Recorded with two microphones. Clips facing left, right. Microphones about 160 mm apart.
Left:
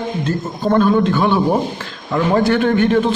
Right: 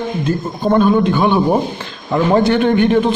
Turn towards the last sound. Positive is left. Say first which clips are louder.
# right 2 dB
turn(degrees=-15)  # may be behind; listen again after turning